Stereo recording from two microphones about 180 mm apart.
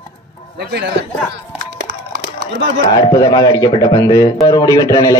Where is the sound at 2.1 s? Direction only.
70° right (ahead or behind).